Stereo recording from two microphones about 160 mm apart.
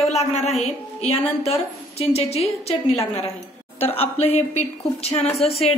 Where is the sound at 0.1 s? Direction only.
40° left (ahead or behind).